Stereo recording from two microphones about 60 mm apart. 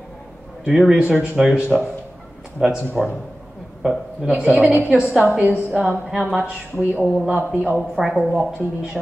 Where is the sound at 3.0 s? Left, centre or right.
Right.